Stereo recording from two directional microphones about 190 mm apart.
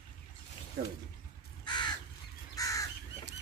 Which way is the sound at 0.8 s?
50° right (ahead or behind).